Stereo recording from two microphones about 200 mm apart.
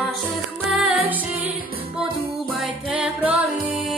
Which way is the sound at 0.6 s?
5° right (ahead or behind).